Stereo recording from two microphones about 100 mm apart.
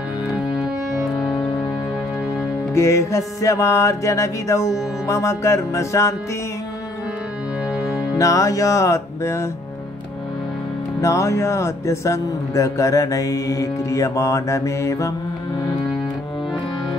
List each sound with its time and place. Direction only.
2.7 s speech: 30° left (ahead or behind)
8.2 s speech: 35° left (ahead or behind)
11.0 s speech: 30° left (ahead or behind)